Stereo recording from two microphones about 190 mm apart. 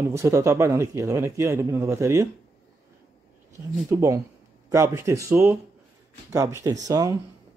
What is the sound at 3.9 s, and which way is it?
Speech, 15° right (ahead or behind).